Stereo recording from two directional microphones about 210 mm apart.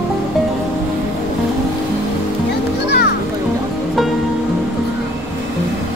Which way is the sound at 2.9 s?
50° left (ahead or behind).